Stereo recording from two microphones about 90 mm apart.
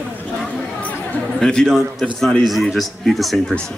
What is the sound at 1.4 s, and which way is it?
A man's voice, 5° left (ahead or behind).